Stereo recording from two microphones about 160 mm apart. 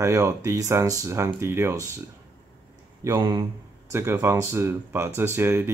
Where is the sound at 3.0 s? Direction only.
20° right (ahead or behind).